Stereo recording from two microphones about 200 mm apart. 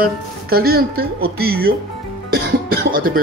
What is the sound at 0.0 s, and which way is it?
Speech, 50° right (ahead or behind).